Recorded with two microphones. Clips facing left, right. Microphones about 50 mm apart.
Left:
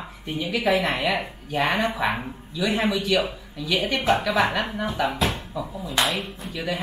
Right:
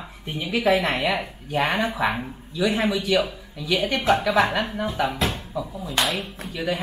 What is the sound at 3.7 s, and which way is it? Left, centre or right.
Speech, left.